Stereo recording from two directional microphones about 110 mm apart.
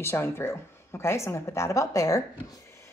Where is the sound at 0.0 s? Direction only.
20° left (ahead or behind).